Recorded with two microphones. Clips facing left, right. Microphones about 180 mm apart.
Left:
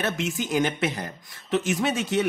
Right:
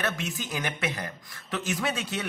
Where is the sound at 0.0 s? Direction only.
20° left (ahead or behind).